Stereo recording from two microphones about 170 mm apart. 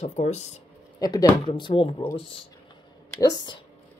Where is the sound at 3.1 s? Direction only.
20° left (ahead or behind).